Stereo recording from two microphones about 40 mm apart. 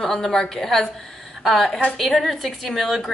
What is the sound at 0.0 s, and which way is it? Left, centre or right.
A woman's voice, centre.